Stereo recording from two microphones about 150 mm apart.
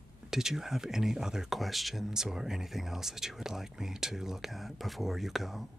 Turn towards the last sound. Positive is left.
turn(degrees=0)  # may be behind; listen again after turning